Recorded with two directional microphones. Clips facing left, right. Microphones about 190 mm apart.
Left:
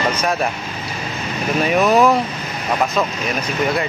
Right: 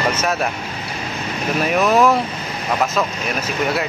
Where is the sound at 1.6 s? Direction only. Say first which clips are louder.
Left 1 dB; centre (ahead or behind).